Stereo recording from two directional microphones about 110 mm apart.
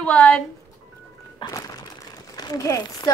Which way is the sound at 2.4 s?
35° left (ahead or behind).